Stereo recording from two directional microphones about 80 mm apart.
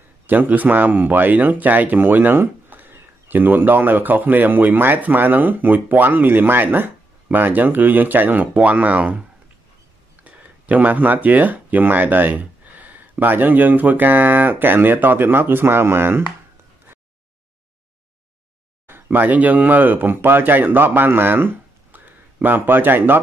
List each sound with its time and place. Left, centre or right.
0.3 s speech: right
10.2 s speech: centre
18.9 s speech: right
21.9 s a sound: right